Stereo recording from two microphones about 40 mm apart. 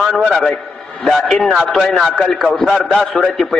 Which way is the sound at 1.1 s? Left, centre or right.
Centre.